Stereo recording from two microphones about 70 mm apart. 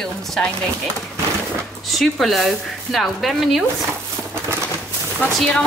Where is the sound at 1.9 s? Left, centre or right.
Centre.